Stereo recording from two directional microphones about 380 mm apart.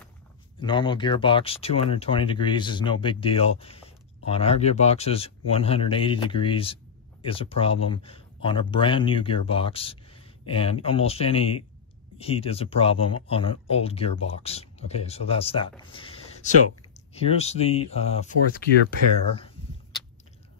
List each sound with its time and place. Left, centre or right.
0.6 s speech: centre